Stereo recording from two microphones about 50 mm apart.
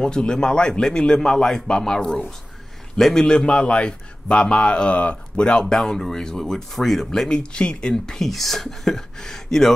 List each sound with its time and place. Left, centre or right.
0.0 s a man's voice: centre
3.3 s a man's voice: left
8.3 s a man's voice: centre